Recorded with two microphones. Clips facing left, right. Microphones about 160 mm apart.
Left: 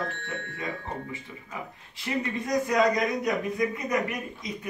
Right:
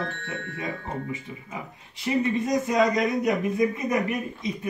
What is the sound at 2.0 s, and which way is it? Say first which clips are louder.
A man's voice: right 5 dB; 20° right (ahead or behind).